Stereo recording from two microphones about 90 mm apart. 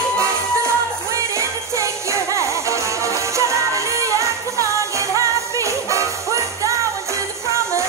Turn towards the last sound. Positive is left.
turn(degrees=-35)  # may be behind; listen again after turning